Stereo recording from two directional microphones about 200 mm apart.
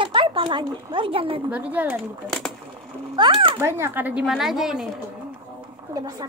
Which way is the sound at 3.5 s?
15° right (ahead or behind).